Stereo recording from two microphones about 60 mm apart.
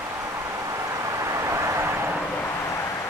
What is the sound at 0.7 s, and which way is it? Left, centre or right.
Vehicle, right.